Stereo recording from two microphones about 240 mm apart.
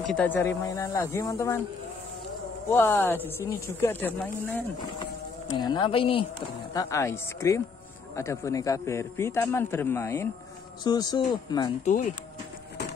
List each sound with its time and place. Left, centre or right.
0.1 s a man's voice: centre
2.7 s a man's voice: centre
5.6 s a man's voice: centre
11.8 s speech: left